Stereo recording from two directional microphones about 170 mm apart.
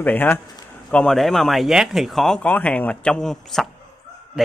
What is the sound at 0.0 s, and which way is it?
Speech, 10° left (ahead or behind).